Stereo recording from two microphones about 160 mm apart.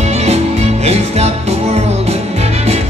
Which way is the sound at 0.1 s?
40° right (ahead or behind).